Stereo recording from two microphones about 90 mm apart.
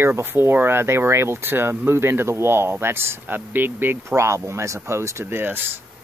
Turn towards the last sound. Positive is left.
turn(degrees=-25)  # may be behind; listen again after turning